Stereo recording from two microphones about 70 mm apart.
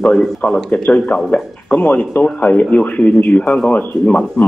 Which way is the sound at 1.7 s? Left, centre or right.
Left.